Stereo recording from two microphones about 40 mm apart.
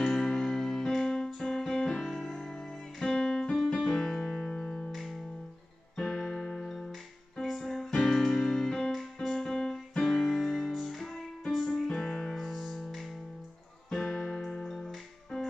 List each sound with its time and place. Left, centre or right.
0.0 s keyboard: centre
1.8 s music: centre
3.7 s piano: centre
4.5 s music: left
5.9 s music: centre
8.9 s keyboard: centre
9.6 s music: centre
11.9 s music: centre
12.4 s music: centre
13.8 s music: left